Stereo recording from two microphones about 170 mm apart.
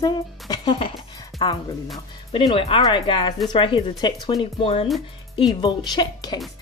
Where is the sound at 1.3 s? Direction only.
Centre (ahead or behind).